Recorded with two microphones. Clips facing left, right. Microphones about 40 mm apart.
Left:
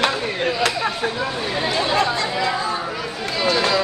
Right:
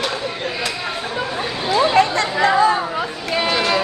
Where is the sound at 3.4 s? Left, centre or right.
Right.